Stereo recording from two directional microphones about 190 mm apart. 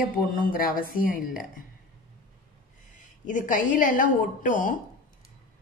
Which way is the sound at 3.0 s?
40° left (ahead or behind).